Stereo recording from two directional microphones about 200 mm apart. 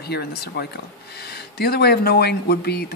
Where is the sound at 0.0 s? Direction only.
55° left (ahead or behind).